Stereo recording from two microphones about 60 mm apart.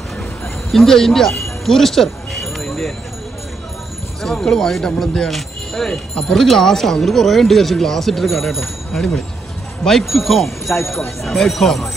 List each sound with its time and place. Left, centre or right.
0.7 s speech: centre
2.6 s a sound: centre
4.2 s speech: centre